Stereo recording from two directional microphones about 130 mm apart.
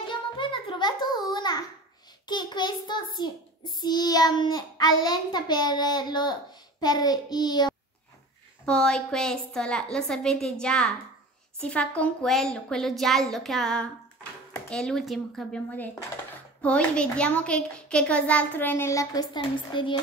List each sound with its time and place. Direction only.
0.0 s music: 40° left (ahead or behind)
2.2 s a child's voice: 35° left (ahead or behind)
8.6 s a woman's voice: 5° left (ahead or behind); by 19.2 s 25° left (ahead or behind)
19.3 s a child's voice: 40° left (ahead or behind)